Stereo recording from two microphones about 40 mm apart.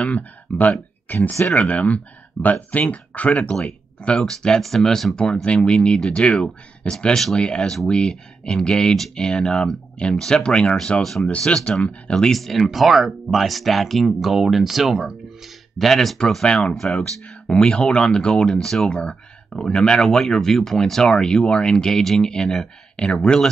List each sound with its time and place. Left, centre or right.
0.0 s speech: left
1.5 s speech: left
4.2 s speech: centre
5.2 s speech: left
5.8 s speech: centre
7.6 s speech: centre
7.9 s speech: centre
11.0 s speech: centre
11.4 s speech: centre
12.3 s speech: centre
17.0 s speech: left
18.9 s speech: left